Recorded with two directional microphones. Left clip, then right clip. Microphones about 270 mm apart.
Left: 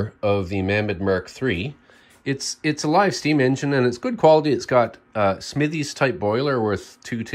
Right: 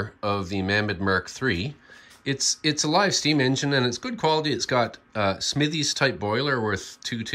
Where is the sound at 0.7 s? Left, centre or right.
Right.